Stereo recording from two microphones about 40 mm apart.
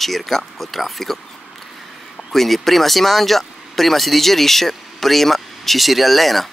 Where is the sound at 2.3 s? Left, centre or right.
Centre.